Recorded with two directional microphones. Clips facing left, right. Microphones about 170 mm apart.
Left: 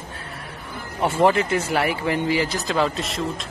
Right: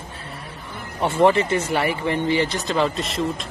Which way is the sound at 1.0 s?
5° left (ahead or behind).